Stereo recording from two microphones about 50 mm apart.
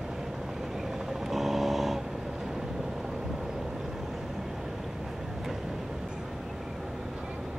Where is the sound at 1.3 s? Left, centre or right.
Centre.